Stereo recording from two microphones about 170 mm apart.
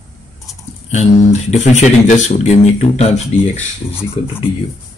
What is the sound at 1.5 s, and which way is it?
Speech, 45° left (ahead or behind).